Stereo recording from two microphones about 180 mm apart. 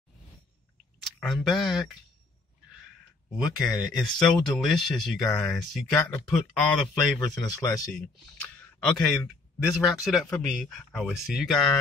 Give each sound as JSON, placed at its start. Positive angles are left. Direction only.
{"t": 1.2, "sound": "speech", "side_deg": 0}
{"t": 3.3, "sound": "speech", "side_deg": 0}
{"t": 7.2, "sound": "speech", "side_deg": 20}
{"t": 8.7, "sound": "speech", "side_deg": 5}